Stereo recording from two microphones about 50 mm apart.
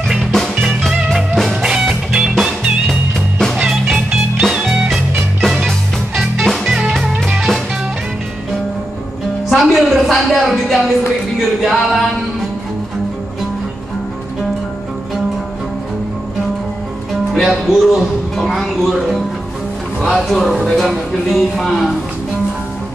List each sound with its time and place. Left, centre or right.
0.3 s music: centre
2.9 s music: centre
3.5 s music: centre
6.6 s music: centre
9.5 s music: centre
10.0 s a sound: centre
11.6 s a capella: centre
17.3 s speech: centre